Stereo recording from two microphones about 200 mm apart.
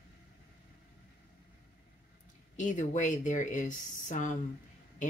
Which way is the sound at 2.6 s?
40° left (ahead or behind).